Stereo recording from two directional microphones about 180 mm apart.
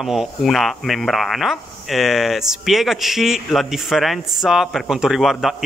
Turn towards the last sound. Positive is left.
turn(degrees=0)  # may be behind; listen again after turning